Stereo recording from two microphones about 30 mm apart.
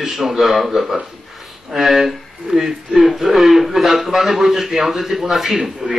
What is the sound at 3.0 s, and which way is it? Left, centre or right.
A man's voice, centre.